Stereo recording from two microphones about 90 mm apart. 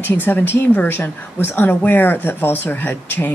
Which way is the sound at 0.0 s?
20° left (ahead or behind).